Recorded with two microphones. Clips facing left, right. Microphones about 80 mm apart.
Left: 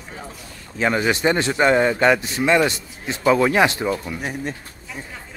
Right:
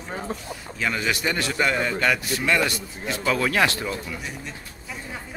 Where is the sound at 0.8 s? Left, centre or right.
Left.